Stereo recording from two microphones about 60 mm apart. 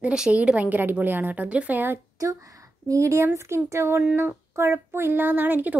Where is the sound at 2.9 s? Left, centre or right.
Right.